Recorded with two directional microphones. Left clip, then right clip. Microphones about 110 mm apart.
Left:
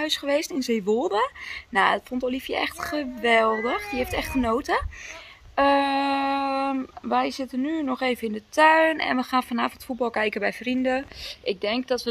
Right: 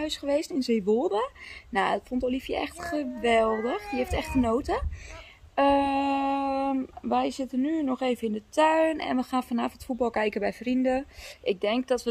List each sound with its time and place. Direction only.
0.0 s speech: 20° right (ahead or behind)
9.8 s speech: 10° left (ahead or behind)
10.1 s speech: 35° right (ahead or behind)